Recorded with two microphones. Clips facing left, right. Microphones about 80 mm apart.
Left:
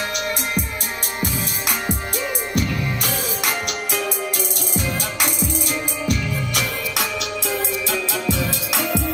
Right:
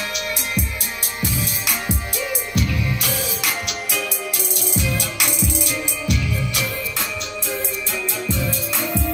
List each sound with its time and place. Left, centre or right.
1.2 s music: left
7.9 s music: left